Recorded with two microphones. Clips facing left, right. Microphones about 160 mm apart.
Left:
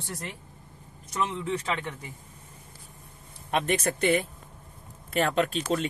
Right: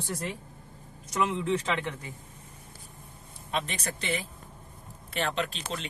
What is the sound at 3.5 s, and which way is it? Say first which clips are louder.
Speech: left 7 dB; 55° left (ahead or behind).